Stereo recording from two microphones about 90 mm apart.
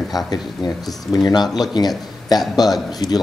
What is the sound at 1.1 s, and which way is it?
Speech, 50° left (ahead or behind).